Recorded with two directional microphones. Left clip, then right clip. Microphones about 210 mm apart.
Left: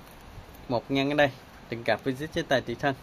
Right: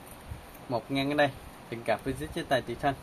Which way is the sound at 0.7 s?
55° left (ahead or behind).